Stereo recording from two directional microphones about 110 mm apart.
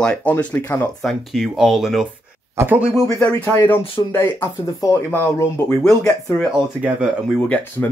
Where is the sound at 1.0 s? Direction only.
Centre (ahead or behind).